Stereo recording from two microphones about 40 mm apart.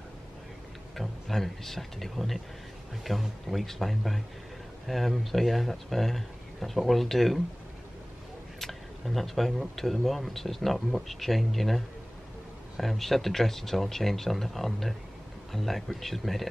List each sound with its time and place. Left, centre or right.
0.9 s speech: centre
8.5 s speech: centre